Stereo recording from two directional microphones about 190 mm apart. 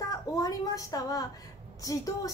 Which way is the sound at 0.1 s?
20° left (ahead or behind).